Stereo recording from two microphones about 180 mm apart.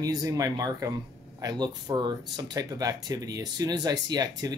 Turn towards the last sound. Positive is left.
turn(degrees=-20)  # may be behind; listen again after turning